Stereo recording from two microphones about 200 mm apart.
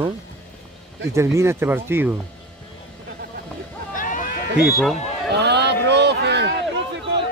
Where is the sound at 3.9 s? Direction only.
40° left (ahead or behind).